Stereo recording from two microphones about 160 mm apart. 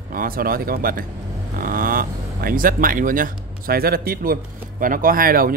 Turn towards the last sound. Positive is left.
turn(degrees=-65)  # may be behind; listen again after turning